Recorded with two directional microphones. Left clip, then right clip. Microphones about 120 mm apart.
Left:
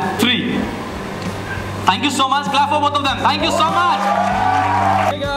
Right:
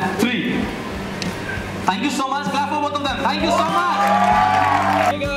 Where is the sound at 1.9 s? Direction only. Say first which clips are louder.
Left 5 dB; 30° left (ahead or behind).